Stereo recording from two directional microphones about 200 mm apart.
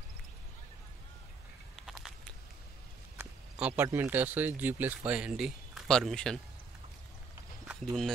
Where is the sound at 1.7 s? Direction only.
Centre (ahead or behind).